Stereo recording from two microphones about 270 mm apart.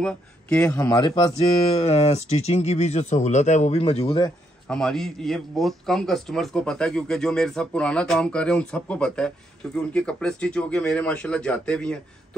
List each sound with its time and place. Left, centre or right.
0.0 s speech: centre
4.6 s speech: centre